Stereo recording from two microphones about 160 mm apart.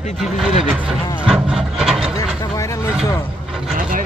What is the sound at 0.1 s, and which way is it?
Speech, centre (ahead or behind).